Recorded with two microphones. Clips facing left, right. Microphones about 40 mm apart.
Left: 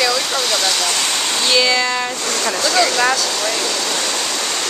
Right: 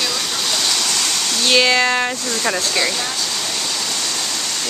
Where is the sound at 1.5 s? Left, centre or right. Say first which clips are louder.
Right 2 dB; right.